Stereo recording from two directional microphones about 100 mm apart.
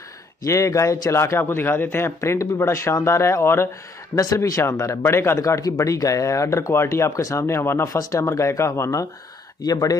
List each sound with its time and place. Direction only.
0.5 s a man's voice: 30° left (ahead or behind)